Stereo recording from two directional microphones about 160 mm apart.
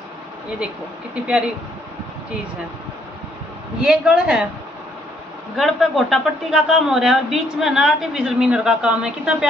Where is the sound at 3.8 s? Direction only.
5° right (ahead or behind).